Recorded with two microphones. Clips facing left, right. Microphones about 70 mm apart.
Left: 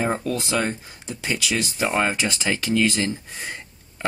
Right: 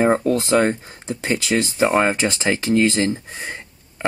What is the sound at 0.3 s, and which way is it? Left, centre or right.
Speech, right.